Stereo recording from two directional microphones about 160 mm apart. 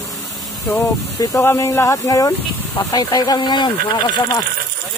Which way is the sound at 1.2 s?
15° left (ahead or behind).